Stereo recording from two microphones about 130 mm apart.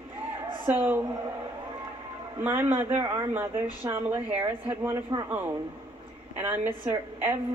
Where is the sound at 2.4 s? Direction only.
15° right (ahead or behind).